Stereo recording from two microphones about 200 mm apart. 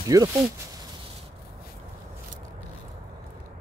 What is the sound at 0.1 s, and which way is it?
Speech, 15° right (ahead or behind).